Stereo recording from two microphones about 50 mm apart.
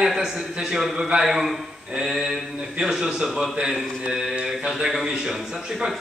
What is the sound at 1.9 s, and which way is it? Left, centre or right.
Speech, centre.